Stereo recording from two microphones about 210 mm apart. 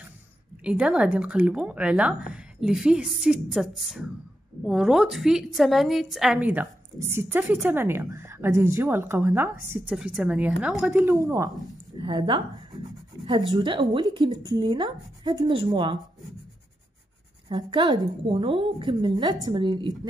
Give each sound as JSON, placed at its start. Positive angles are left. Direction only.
{"t": 0.7, "sound": "a woman's voice", "side_deg": -5}
{"t": 13.1, "sound": "writing", "side_deg": -15}
{"t": 13.5, "sound": "speech", "side_deg": -20}
{"t": 17.5, "sound": "speech", "side_deg": -20}